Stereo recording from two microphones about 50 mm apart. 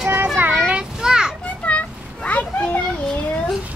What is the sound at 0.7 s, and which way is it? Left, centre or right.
Children playing, centre.